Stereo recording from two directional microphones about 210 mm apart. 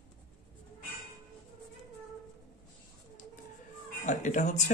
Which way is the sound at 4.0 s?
35° left (ahead or behind).